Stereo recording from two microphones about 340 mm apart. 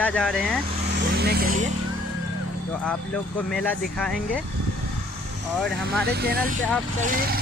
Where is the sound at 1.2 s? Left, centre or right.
Right.